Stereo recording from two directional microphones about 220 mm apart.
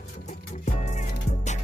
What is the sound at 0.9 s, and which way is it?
Music, 30° left (ahead or behind).